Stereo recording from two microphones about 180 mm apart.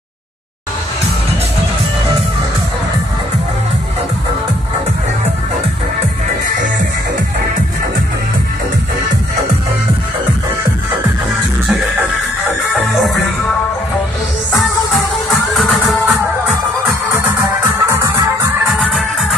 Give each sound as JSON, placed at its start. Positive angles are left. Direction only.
{"t": 12.9, "sound": "music", "side_deg": 0}
{"t": 15.5, "sound": "music", "side_deg": 0}
{"t": 17.8, "sound": "music", "side_deg": -15}
{"t": 18.7, "sound": "music", "side_deg": 0}